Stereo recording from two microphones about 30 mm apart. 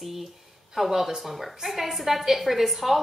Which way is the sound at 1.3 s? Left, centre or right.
Centre.